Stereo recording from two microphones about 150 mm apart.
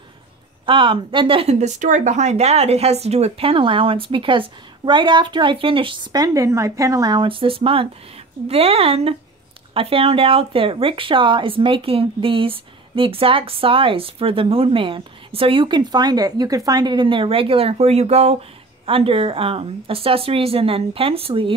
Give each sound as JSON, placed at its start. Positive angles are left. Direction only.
{"t": 0.7, "sound": "speech", "side_deg": -35}